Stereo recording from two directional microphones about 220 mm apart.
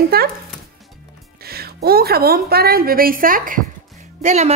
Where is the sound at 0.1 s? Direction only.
45° right (ahead or behind).